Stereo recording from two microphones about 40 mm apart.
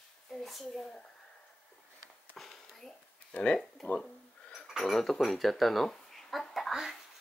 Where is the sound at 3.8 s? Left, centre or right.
Left.